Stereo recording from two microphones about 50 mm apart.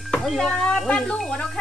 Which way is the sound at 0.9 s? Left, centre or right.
Left.